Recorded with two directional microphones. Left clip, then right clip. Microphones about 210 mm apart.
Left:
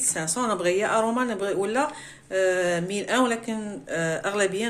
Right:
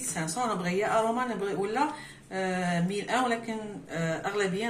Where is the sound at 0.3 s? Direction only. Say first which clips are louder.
Left 6 dB; 55° left (ahead or behind).